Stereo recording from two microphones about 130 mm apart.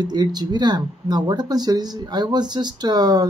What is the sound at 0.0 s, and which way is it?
Speech, 30° right (ahead or behind).